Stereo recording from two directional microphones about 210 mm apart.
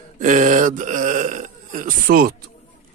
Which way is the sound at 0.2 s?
35° right (ahead or behind).